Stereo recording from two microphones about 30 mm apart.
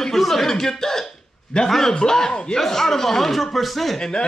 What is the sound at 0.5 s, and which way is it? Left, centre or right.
A man's voice, centre.